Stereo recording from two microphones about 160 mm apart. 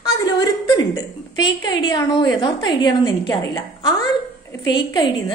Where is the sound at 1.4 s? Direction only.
25° left (ahead or behind).